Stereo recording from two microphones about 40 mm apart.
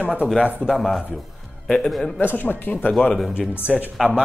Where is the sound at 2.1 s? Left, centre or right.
Left.